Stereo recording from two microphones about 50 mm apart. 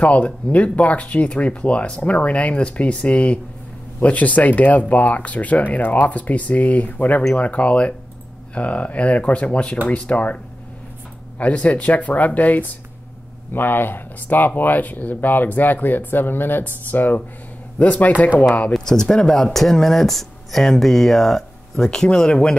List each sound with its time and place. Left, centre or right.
0.0 s speech: left
13.5 s speech: left
18.7 s speech: centre